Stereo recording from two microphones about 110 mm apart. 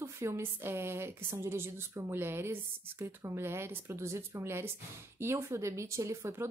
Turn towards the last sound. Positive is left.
turn(degrees=-25)  # may be behind; listen again after turning